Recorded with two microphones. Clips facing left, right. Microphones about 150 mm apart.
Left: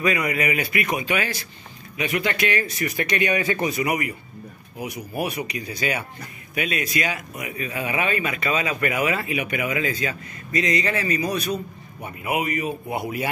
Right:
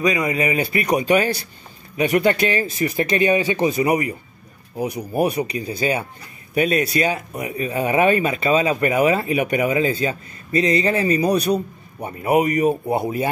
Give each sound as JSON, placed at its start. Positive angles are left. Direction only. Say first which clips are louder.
{"t": 0.0, "sound": "a man's voice", "louder": "right 3 dB", "side_deg": -20}